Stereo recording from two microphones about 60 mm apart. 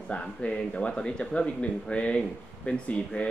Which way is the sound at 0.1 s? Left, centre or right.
Centre.